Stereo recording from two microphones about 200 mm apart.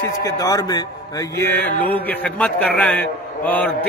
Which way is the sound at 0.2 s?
15° left (ahead or behind).